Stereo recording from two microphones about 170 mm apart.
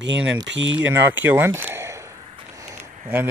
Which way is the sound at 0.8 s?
10° right (ahead or behind).